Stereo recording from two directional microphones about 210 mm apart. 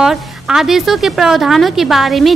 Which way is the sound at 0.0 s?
Centre (ahead or behind).